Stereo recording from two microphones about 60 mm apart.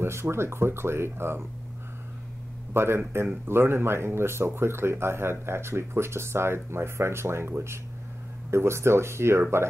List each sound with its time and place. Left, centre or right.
0.0 s speech: right
2.7 s speech: right